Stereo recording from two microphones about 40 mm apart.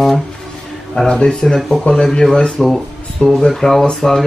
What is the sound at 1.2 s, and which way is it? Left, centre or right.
Speech, centre.